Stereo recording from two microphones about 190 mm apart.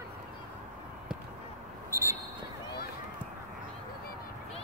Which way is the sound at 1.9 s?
15° right (ahead or behind).